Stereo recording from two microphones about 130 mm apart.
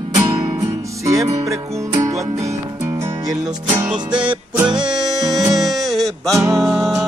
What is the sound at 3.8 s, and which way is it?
Music, 5° right (ahead or behind).